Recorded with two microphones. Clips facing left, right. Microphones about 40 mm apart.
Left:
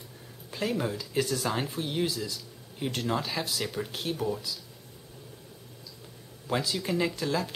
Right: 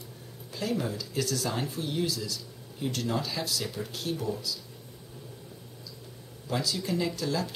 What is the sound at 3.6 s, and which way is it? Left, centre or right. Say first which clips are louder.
Speech: left 1 dB; centre.